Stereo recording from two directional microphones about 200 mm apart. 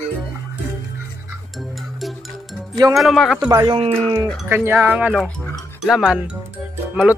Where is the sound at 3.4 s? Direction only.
20° right (ahead or behind).